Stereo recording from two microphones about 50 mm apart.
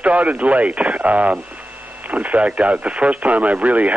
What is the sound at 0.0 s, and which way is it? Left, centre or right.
Speech, right.